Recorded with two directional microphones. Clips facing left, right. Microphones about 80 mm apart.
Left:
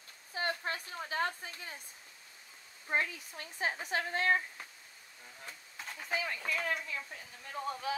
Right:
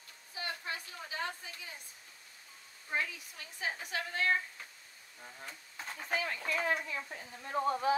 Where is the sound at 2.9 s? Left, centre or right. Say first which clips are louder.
Left 3 dB; left.